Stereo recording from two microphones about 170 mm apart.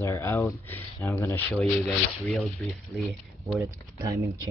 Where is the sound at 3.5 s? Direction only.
20° right (ahead or behind).